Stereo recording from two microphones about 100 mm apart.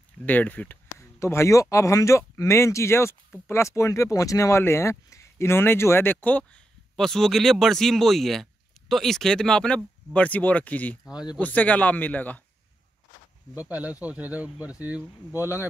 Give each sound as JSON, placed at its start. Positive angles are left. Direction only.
{"t": 0.2, "sound": "speech", "side_deg": 15}
{"t": 0.9, "sound": "speech", "side_deg": 30}
{"t": 7.0, "sound": "speech", "side_deg": 5}
{"t": 13.6, "sound": "speech", "side_deg": -15}